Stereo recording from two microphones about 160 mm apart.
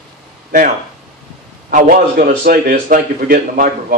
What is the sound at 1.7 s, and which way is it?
Speech, 60° right (ahead or behind).